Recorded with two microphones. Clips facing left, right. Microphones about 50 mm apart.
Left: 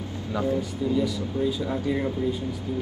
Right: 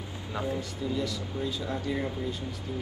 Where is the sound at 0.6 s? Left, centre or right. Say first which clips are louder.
Left 7 dB; centre.